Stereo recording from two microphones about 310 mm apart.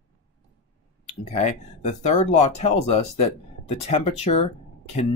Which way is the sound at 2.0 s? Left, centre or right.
Left.